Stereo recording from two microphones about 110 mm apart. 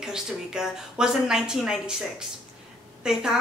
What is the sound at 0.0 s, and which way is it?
A woman's voice, 5° right (ahead or behind).